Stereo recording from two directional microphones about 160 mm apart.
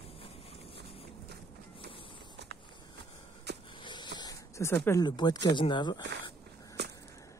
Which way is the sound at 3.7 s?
30° left (ahead or behind).